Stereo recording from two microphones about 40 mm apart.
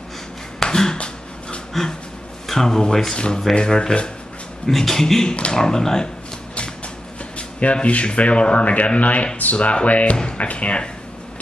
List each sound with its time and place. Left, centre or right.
0.6 s a sound: centre
0.9 s a sound: left
2.4 s a man's voice: centre
4.6 s speech: centre
5.3 s speech: left
5.6 s speech: centre
7.3 s speech: left